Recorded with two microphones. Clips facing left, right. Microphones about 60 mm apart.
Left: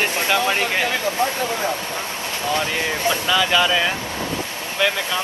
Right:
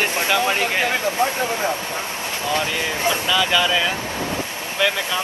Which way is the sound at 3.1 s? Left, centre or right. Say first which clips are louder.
Even; right.